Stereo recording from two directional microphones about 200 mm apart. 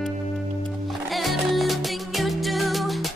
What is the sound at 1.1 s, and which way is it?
Music, centre (ahead or behind).